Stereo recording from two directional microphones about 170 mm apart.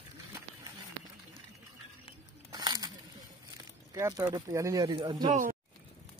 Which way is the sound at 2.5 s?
25° right (ahead or behind).